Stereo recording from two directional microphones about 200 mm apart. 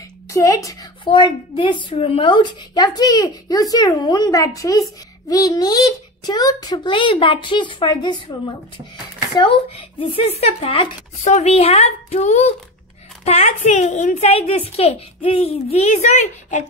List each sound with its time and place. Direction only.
0.3 s a woman's voice: 15° left (ahead or behind); by 16.6 s 35° left (ahead or behind)